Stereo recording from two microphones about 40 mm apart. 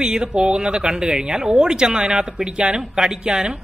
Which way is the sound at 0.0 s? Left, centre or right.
Right.